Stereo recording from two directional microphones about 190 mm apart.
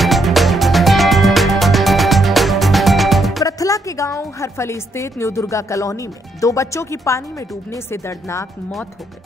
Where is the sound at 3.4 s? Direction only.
15° left (ahead or behind).